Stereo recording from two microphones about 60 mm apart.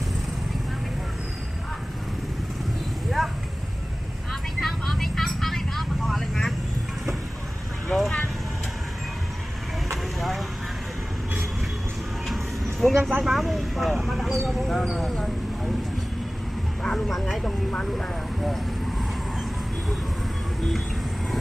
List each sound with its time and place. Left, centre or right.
3.2 s a sound: centre
4.3 s vehicle: centre
7.9 s vehicle: centre
12.8 s vehicle: centre
16.8 s a sound: centre
17.6 s vehicle: centre